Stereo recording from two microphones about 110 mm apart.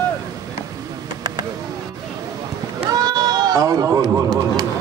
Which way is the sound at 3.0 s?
40° right (ahead or behind).